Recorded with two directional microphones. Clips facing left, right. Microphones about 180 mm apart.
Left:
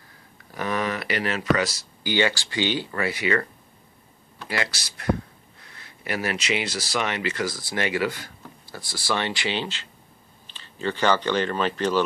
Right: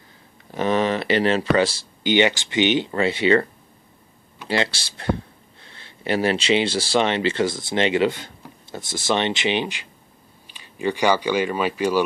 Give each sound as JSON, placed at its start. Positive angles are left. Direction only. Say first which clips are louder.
{"t": 0.5, "sound": "speech", "louder": "right 6 dB", "side_deg": -25}
{"t": 4.5, "sound": "speech", "louder": "right 6 dB", "side_deg": -25}